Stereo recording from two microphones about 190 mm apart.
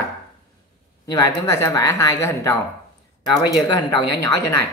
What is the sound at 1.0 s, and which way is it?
Speech, 15° left (ahead or behind).